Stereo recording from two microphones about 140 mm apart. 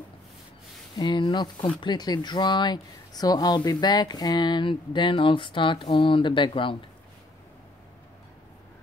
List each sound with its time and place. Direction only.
0.9 s speech: 35° left (ahead or behind)